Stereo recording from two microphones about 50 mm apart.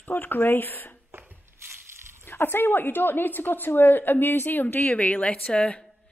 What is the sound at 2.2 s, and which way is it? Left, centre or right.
A woman's voice, left.